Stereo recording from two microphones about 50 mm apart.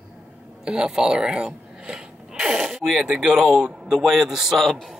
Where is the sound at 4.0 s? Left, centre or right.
Centre.